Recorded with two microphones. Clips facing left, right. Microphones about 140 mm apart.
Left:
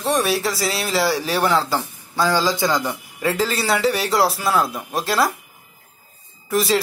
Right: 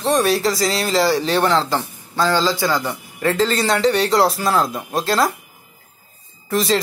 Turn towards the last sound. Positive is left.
turn(degrees=5)  # may be behind; listen again after turning